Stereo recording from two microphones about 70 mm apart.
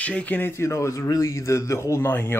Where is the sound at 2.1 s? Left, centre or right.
Left.